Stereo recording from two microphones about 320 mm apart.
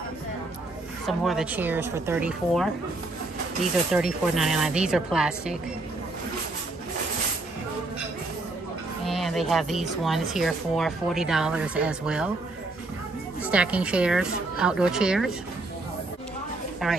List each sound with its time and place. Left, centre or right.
1.0 s speech: centre
3.9 s speech: centre
9.0 s speech: centre
13.4 s speech: centre
16.8 s speech: centre